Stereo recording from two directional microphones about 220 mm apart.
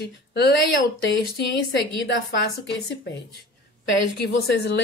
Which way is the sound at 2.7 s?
50° left (ahead or behind).